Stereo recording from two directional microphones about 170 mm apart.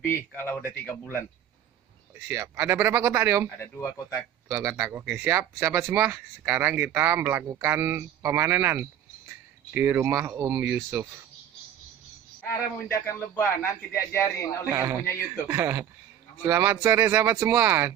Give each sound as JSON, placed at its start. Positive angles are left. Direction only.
{"t": 0.0, "sound": "a man's voice", "side_deg": 15}
{"t": 2.1, "sound": "speech", "side_deg": -10}
{"t": 3.4, "sound": "a man's voice", "side_deg": 10}
{"t": 4.5, "sound": "speech", "side_deg": -15}
{"t": 13.0, "sound": "a man's voice", "side_deg": 10}
{"t": 14.7, "sound": "speech", "side_deg": -15}